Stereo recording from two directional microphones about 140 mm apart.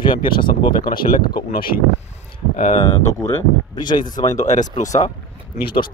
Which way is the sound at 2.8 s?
25° left (ahead or behind).